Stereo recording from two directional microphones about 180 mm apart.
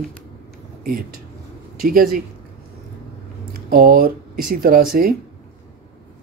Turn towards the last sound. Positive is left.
turn(degrees=-55)  # may be behind; listen again after turning